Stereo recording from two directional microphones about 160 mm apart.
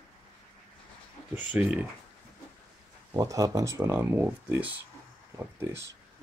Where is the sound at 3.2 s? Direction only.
20° right (ahead or behind).